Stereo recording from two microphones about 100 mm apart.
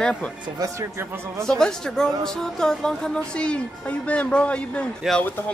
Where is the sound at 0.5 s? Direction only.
30° right (ahead or behind).